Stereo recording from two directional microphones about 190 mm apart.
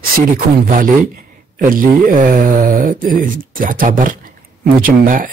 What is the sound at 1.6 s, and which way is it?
Speech, 45° right (ahead or behind).